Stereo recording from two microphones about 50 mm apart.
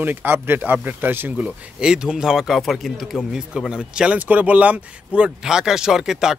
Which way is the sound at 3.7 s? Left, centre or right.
Centre.